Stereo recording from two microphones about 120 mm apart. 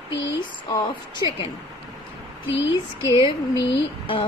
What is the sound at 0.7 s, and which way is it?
Speech, 35° left (ahead or behind).